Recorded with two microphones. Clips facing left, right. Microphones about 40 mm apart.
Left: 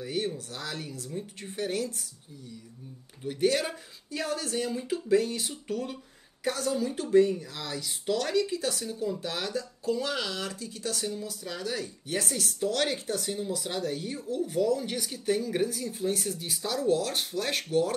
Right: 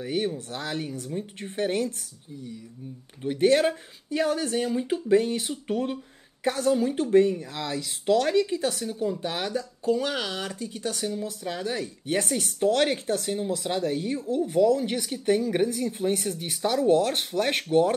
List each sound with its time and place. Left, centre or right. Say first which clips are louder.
0.0 s speech: right 4 dB; right
3.3 s speech: right 6 dB; right